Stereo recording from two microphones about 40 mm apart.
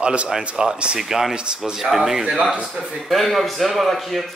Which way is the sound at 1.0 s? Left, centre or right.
Centre.